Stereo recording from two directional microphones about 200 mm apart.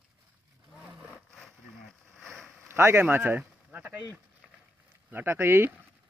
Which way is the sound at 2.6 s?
10° right (ahead or behind).